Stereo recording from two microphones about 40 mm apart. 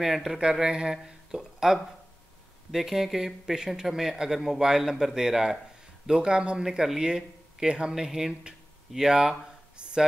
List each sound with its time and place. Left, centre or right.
0.0 s speech: centre
0.4 s speech: centre
6.0 s speech: right
6.6 s speech: centre
9.8 s a sound: right